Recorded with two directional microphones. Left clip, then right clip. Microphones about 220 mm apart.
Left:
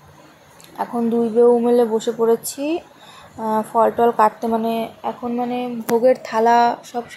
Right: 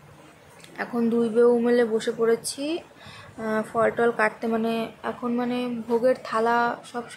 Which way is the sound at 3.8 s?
10° left (ahead or behind).